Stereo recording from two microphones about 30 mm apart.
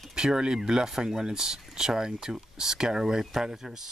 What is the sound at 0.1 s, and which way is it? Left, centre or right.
Speech, right.